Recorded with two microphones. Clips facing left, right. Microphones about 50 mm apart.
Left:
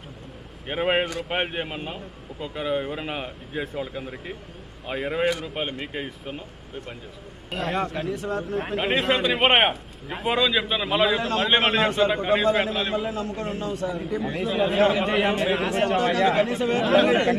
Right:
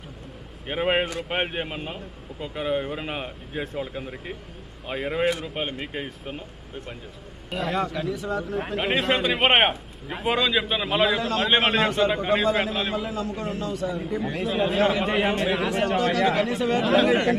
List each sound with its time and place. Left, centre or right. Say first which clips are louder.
0.7 s a man's voice: even; centre
7.5 s speech: even; centre
8.1 s a man's voice: even; left
8.7 s a man's voice: left 1 dB; centre
11.1 s speech: left 1 dB; left
11.4 s a man's voice: even; centre
13.6 s a man's voice: even; left
13.9 s a man's voice: even; centre
16.4 s speech: even; left
16.8 s a man's voice: left 2 dB; centre